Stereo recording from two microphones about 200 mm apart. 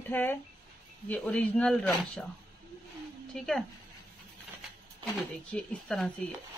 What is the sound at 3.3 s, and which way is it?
Speech, 5° left (ahead or behind).